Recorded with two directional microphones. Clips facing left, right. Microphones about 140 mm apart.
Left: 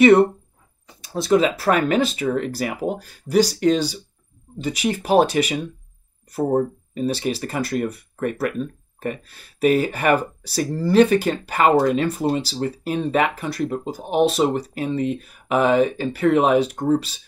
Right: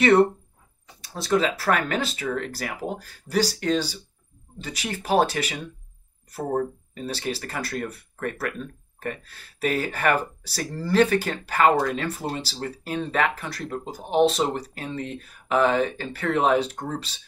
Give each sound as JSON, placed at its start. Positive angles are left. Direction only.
{"t": 1.0, "sound": "speech", "side_deg": 15}